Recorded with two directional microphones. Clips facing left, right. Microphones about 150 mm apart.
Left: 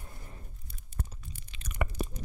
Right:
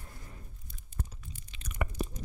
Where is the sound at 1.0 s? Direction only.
65° left (ahead or behind).